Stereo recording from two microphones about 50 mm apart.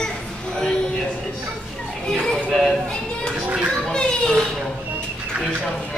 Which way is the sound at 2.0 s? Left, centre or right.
Centre.